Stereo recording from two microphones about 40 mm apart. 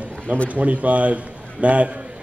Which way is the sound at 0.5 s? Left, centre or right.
Right.